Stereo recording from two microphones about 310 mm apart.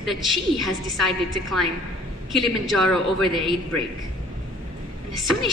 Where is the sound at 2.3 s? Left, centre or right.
Centre.